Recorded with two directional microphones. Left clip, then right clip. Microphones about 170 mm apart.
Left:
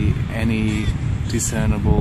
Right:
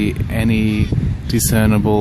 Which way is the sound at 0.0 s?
40° right (ahead or behind).